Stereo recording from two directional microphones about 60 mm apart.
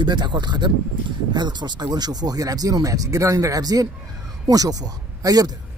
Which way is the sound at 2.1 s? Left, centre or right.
Right.